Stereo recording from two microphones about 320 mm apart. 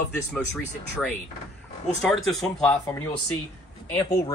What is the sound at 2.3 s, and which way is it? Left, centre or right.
Speech, centre.